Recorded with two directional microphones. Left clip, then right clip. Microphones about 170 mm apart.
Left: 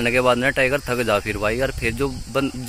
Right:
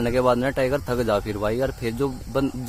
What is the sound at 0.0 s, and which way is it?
Speech, 30° left (ahead or behind).